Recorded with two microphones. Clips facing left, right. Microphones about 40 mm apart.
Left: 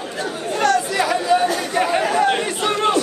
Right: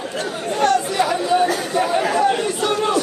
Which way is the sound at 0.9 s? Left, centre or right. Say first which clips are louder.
Even; left.